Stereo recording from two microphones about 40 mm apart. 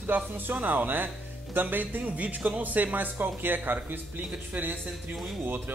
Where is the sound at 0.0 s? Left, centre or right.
Right.